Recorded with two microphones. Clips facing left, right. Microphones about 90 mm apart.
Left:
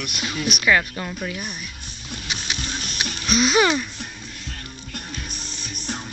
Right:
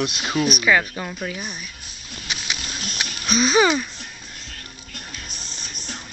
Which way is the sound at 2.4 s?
10° right (ahead or behind).